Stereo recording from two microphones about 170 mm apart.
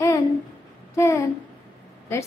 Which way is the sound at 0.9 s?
15° left (ahead or behind).